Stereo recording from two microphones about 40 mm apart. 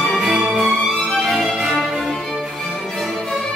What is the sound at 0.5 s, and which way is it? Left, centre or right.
Music, centre.